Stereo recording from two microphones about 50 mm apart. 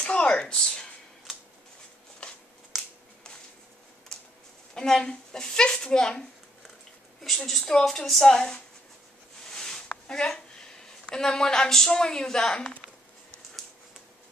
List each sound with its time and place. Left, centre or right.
0.0 s a sound: left
0.6 s speech: centre
4.7 s a woman's voice: centre
7.4 s a woman's voice: centre
9.5 s a sound: centre
11.1 s a woman's voice: centre